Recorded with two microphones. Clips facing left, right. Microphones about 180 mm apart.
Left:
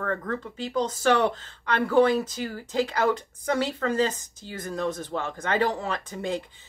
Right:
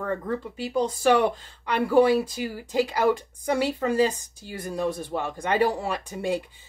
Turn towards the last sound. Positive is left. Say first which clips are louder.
# right 2 dB
turn(degrees=-10)  # may be behind; listen again after turning